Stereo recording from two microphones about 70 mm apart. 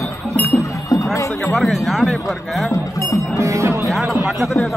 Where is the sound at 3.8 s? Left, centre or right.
Centre.